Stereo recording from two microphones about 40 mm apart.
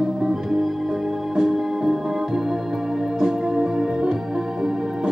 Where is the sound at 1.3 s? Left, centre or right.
Centre.